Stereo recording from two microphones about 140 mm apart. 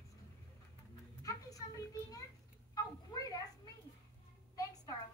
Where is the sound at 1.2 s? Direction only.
25° left (ahead or behind).